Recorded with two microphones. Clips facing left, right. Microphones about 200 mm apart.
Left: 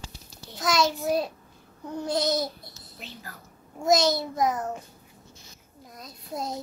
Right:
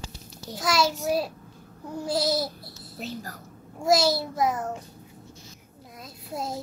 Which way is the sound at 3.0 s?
40° right (ahead or behind).